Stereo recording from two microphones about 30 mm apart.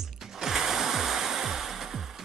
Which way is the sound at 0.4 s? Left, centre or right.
Centre.